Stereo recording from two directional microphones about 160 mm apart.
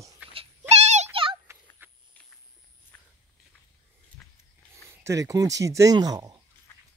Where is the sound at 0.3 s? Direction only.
40° right (ahead or behind).